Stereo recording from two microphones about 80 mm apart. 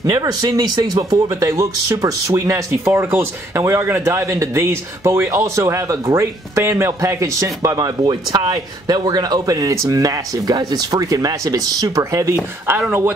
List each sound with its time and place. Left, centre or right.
0.0 s speech: right
11.0 s speech: right